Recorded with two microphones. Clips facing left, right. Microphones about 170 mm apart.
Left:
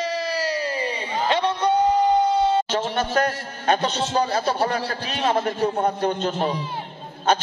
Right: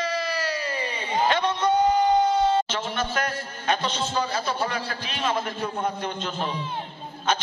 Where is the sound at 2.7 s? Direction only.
40° left (ahead or behind).